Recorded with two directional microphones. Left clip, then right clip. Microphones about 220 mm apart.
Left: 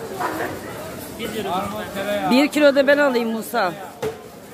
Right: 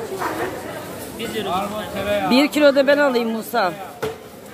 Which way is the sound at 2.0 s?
35° right (ahead or behind).